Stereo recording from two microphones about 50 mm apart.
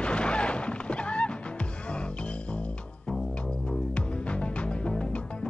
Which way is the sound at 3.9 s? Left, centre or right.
Left.